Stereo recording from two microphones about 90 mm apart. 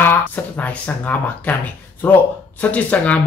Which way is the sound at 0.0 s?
20° left (ahead or behind).